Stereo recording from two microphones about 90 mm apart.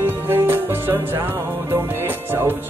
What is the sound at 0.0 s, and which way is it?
Music, 25° right (ahead or behind).